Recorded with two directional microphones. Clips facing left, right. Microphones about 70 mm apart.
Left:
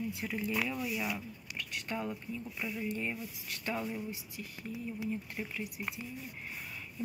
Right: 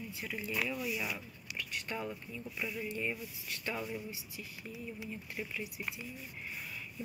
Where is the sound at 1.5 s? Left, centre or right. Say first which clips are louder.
Left 1 dB; left.